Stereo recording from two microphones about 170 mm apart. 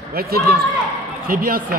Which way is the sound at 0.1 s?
65° right (ahead or behind).